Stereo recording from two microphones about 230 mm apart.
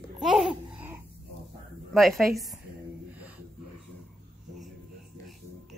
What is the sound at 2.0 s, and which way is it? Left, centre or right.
Speech, centre.